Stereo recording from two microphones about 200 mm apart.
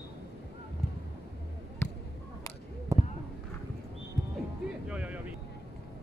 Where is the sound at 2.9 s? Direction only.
15° right (ahead or behind).